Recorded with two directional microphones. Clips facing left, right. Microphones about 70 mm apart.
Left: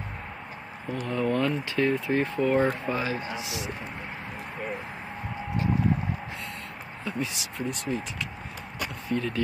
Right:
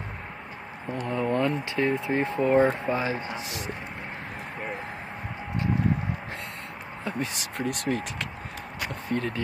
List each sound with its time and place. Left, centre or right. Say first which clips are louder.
1.0 s speech: right 1 dB; right
3.3 s speech: even; right
7.1 s speech: right 1 dB; right
9.1 s speech: even; right